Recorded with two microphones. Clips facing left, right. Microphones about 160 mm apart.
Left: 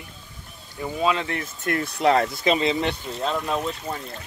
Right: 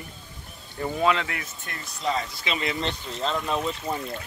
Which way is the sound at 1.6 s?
65° left (ahead or behind).